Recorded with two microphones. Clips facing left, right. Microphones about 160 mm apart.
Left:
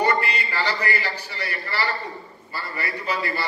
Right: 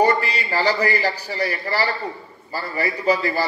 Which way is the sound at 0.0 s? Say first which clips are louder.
Right 4 dB; 40° right (ahead or behind).